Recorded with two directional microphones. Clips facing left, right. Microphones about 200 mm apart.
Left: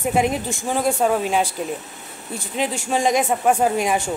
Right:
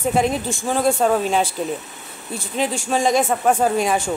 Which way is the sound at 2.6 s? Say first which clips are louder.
Right 1 dB; 15° left (ahead or behind).